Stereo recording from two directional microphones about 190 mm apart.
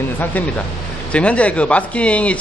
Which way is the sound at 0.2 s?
10° left (ahead or behind).